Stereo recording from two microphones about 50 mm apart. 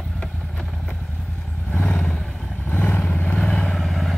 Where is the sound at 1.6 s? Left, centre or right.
Left.